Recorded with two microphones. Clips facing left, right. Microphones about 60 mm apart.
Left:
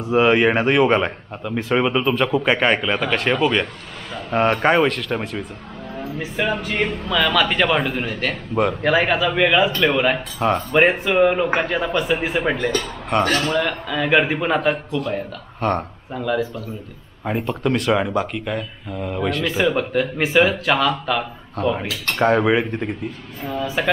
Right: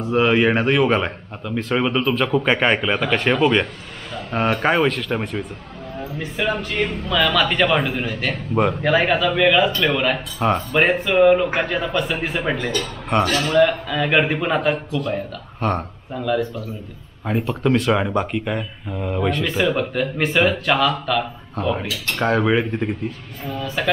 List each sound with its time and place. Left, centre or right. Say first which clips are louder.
0.0 s speech: left 1 dB; centre
23.5 s speech: left 2 dB; centre